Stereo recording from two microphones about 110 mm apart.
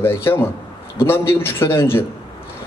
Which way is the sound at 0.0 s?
20° left (ahead or behind).